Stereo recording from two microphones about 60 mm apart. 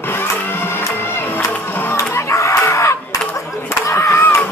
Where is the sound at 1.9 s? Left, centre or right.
Left.